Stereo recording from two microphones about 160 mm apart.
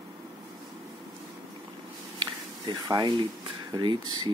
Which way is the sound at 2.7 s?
25° right (ahead or behind).